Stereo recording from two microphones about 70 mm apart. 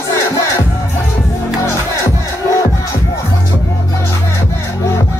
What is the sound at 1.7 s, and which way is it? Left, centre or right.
Music, left.